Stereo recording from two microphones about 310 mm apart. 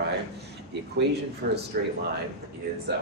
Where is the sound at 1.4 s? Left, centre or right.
Right.